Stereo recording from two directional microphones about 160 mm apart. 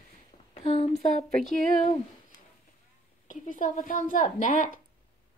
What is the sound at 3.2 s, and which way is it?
Speech, 55° left (ahead or behind).